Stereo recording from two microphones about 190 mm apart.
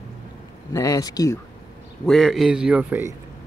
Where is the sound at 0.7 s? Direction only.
15° left (ahead or behind).